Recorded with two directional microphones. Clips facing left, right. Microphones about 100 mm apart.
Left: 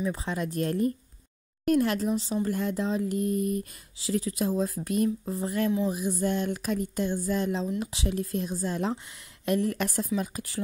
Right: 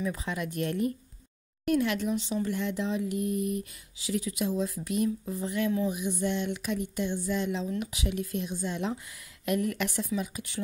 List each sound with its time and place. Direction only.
0.0 s speech: 30° left (ahead or behind)